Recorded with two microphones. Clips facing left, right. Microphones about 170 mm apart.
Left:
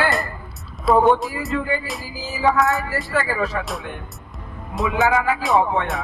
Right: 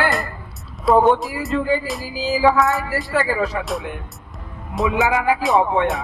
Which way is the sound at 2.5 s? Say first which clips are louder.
Right 1 dB; centre (ahead or behind).